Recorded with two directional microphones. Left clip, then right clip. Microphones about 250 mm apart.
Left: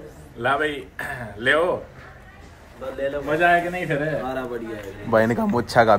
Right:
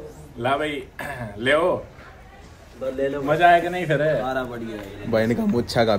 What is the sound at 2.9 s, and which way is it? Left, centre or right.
Speech, centre.